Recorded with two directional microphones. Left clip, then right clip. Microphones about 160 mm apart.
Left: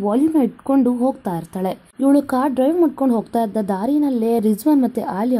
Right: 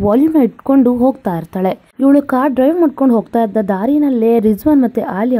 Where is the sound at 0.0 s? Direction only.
25° right (ahead or behind).